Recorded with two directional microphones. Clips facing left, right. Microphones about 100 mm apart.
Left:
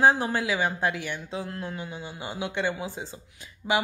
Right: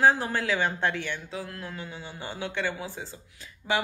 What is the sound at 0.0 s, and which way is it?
Speech, 20° left (ahead or behind).